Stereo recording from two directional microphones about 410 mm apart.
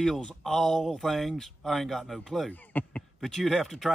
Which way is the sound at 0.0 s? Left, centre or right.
Centre.